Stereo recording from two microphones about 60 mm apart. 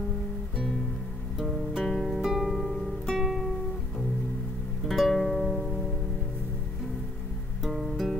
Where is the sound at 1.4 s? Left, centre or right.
Centre.